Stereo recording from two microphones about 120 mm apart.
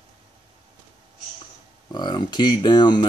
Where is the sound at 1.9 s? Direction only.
40° left (ahead or behind).